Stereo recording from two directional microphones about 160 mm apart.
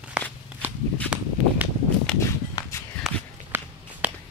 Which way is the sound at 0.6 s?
10° right (ahead or behind).